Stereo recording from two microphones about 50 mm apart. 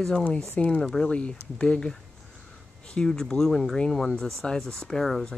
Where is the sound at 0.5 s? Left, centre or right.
Left.